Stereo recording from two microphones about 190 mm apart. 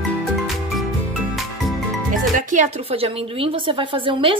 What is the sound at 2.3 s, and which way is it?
A woman's voice, 40° right (ahead or behind).